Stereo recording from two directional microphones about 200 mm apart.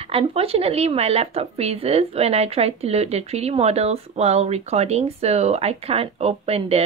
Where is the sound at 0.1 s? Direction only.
30° right (ahead or behind).